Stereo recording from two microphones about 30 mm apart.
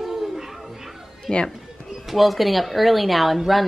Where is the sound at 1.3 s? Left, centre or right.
Left.